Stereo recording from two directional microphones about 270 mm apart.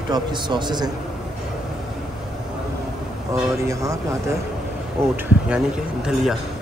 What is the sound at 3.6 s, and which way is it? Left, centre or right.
Speech, centre.